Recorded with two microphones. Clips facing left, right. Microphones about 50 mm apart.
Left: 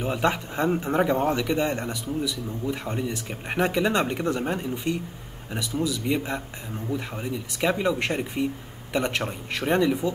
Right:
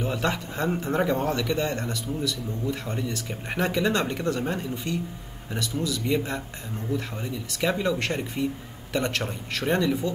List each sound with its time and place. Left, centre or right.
0.0 s a man's voice: centre